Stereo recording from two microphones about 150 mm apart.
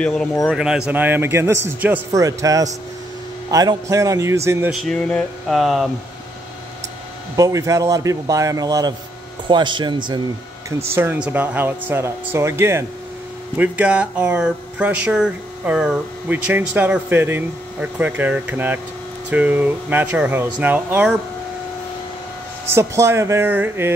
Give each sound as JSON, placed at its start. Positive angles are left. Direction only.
{"t": 0.0, "sound": "speech", "side_deg": 5}
{"t": 0.5, "sound": "a man's voice", "side_deg": -5}
{"t": 4.6, "sound": "speech", "side_deg": 0}
{"t": 7.3, "sound": "a man's voice", "side_deg": -25}
{"t": 11.0, "sound": "speech", "side_deg": -10}
{"t": 22.7, "sound": "speech", "side_deg": -15}